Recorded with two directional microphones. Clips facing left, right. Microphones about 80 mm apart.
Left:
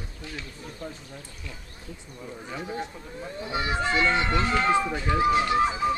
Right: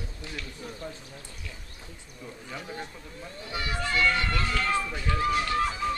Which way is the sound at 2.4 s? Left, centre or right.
Left.